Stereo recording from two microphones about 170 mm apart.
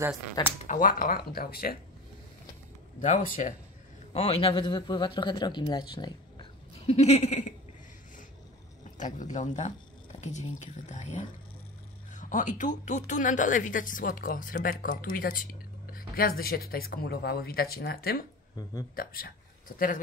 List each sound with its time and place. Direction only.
0.7 s speech: 50° left (ahead or behind)
3.0 s speech: 50° left (ahead or behind)
4.1 s speech: 35° left (ahead or behind)
8.9 s speech: 45° left (ahead or behind)